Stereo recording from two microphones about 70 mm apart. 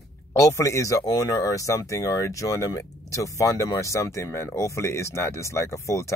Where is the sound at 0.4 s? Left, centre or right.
Left.